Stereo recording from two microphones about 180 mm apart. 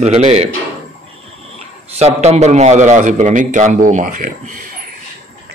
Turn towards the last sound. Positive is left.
turn(degrees=-45)  # may be behind; listen again after turning